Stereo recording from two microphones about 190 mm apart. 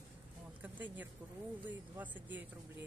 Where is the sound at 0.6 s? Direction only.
10° right (ahead or behind).